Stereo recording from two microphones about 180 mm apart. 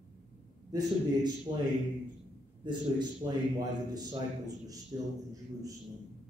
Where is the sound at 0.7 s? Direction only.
20° right (ahead or behind).